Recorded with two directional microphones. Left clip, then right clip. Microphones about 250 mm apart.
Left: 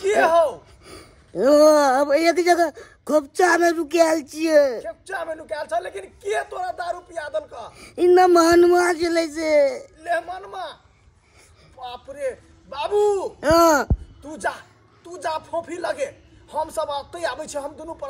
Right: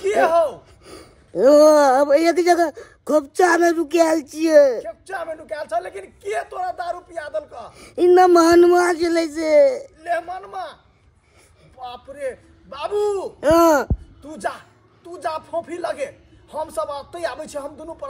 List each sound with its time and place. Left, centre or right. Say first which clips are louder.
0.0 s gasp: even; left
0.8 s speech: right 2 dB; centre
4.8 s a woman's voice: even; left
7.7 s speech: right 2 dB; centre
9.9 s a woman's voice: right 1 dB; left
11.8 s speech: even; left
13.4 s speech: right 2 dB; centre
14.2 s a woman's voice: even; left